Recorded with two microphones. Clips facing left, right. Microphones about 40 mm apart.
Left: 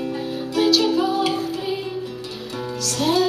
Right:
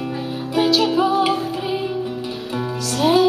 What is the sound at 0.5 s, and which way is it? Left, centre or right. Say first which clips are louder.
Music: right 1 dB; centre.